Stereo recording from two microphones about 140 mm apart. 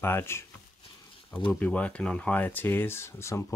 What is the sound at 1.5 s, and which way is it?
Speech, 10° left (ahead or behind).